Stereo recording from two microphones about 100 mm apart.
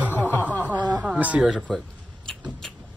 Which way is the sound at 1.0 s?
15° right (ahead or behind).